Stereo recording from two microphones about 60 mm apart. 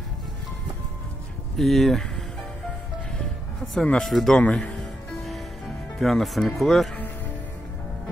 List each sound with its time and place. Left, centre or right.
1.6 s speech: centre
3.7 s speech: centre
4.4 s speech: centre
5.9 s speech: centre